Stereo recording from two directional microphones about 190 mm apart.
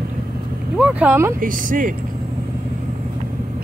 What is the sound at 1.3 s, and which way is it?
Speech, 45° right (ahead or behind).